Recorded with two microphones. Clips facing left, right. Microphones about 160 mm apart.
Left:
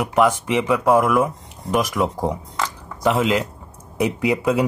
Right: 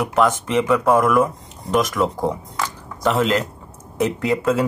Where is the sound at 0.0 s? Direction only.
5° left (ahead or behind).